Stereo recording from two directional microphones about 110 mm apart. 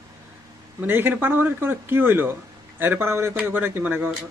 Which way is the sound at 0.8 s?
20° right (ahead or behind).